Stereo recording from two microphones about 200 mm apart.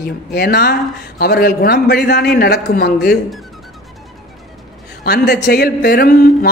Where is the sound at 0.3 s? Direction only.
50° left (ahead or behind).